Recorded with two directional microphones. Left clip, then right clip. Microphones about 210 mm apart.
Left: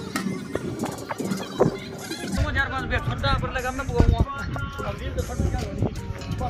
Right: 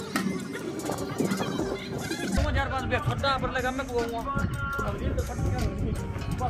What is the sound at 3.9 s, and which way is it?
Speech, centre (ahead or behind).